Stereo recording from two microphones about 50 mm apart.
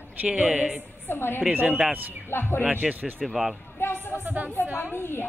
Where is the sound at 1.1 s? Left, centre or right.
Left.